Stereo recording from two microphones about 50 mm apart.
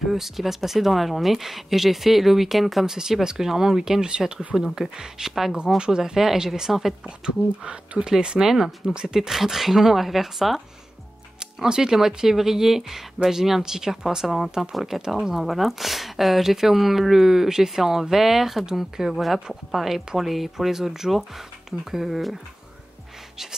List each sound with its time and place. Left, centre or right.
0.1 s speech: centre
7.2 s speech: centre
11.3 s speech: centre